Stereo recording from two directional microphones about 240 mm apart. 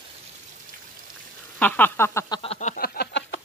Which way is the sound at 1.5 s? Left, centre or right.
Centre.